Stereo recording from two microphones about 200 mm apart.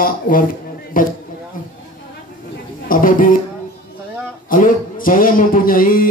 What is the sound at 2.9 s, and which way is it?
Speech, 45° left (ahead or behind).